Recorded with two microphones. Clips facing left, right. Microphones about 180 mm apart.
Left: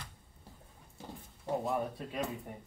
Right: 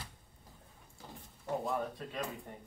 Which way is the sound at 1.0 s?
25° left (ahead or behind).